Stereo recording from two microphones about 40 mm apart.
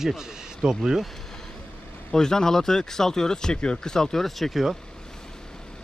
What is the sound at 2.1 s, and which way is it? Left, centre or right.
A man's voice, centre.